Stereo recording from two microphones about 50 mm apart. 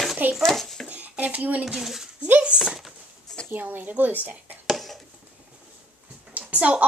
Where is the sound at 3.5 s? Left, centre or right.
Right.